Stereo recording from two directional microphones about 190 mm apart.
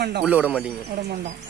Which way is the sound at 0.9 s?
60° right (ahead or behind).